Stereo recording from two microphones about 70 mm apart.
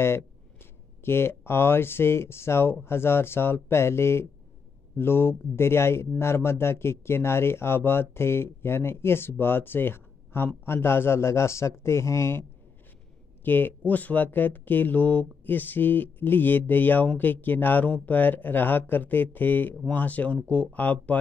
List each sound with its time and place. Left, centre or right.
1.0 s speech: left
13.4 s speech: left